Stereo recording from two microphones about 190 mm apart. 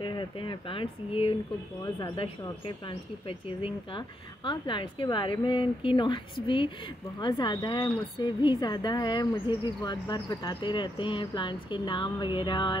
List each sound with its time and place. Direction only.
0.0 s speech: 25° left (ahead or behind)